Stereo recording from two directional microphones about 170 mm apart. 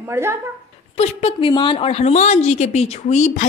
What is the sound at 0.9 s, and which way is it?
A woman's voice, 35° left (ahead or behind).